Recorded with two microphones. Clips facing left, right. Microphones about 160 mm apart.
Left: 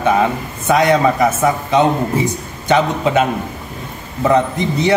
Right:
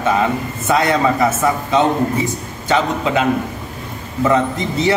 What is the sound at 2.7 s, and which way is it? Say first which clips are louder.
Speech: left 3 dB; 20° left (ahead or behind).